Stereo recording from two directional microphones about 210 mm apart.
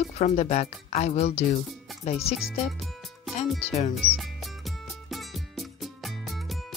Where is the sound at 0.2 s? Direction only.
30° left (ahead or behind).